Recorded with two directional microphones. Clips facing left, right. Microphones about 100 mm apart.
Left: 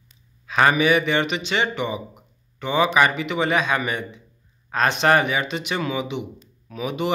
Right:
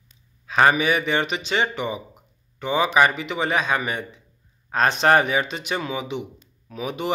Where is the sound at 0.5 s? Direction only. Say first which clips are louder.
Left 1 dB; 30° right (ahead or behind).